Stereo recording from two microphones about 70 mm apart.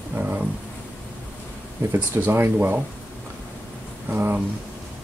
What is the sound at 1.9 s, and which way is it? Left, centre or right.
Speech, right.